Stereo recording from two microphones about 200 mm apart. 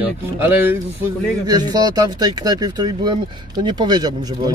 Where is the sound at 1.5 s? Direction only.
20° right (ahead or behind).